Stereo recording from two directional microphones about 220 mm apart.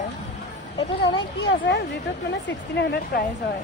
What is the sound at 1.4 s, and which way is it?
Speech, 50° left (ahead or behind).